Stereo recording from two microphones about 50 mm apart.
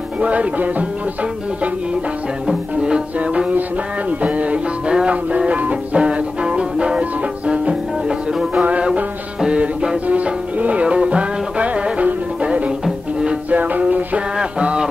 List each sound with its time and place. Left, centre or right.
0.2 s music: right
2.7 s music: right
8.6 s music: right